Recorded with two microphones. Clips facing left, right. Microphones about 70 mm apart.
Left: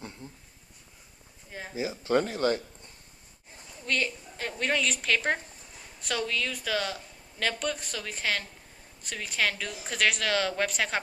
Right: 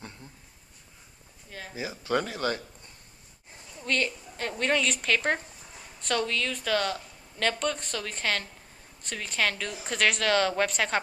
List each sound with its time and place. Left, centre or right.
1.5 s speech: centre
3.8 s a woman's voice: centre